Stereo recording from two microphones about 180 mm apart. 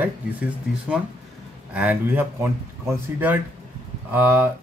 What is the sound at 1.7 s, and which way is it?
Speech, 10° right (ahead or behind).